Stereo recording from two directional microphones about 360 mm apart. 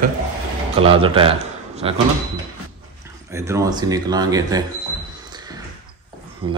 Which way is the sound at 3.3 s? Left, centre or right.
Centre.